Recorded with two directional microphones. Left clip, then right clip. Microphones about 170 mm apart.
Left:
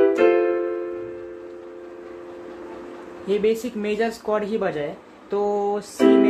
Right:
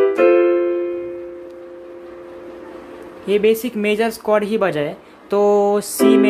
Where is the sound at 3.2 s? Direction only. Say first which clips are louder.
Right 6 dB; 35° right (ahead or behind).